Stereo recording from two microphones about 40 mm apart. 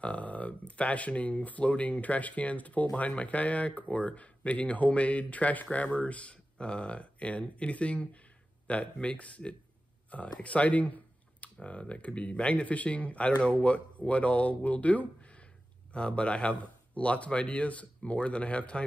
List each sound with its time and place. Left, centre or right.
0.0 s speech: left